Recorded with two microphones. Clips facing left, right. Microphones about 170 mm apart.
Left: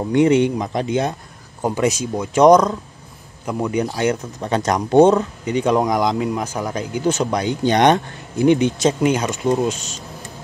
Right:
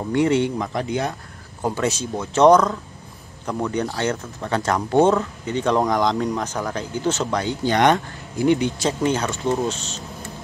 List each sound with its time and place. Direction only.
0.1 s speech: 20° left (ahead or behind)